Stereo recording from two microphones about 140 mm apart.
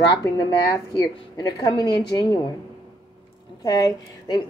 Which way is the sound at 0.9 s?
30° left (ahead or behind).